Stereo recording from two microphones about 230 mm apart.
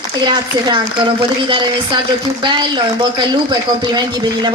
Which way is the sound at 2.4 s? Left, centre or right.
Centre.